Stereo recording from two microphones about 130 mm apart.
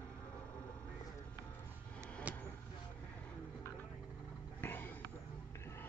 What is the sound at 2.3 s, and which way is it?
Vehicle, 10° right (ahead or behind).